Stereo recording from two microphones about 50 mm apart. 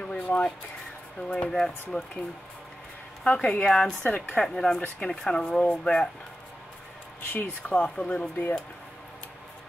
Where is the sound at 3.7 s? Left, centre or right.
Centre.